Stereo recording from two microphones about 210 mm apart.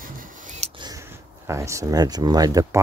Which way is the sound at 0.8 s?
15° right (ahead or behind).